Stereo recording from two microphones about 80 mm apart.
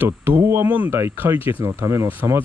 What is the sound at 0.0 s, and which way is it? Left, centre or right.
Speech, right.